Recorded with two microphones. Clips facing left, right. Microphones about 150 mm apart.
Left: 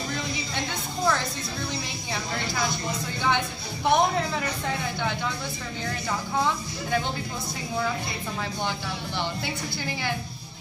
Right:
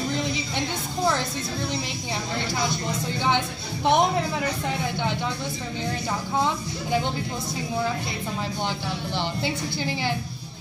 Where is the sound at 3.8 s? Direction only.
20° right (ahead or behind).